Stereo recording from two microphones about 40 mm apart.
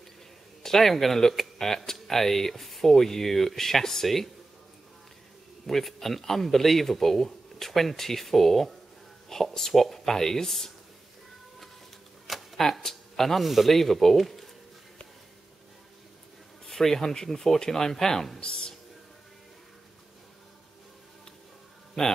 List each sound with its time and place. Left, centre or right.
0.6 s speech: centre
5.7 s a man's voice: centre
12.3 s speech: centre
16.6 s speech: centre
18.4 s a sound: left
22.0 s a man's voice: centre